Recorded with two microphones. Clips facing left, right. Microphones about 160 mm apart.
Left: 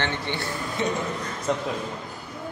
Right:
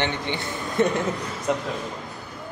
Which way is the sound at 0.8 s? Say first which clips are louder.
Right 6 dB; 50° right (ahead or behind).